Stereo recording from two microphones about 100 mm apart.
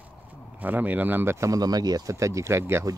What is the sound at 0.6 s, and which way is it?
Speech, 15° right (ahead or behind).